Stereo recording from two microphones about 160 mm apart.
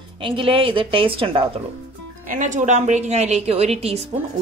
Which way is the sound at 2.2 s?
50° right (ahead or behind).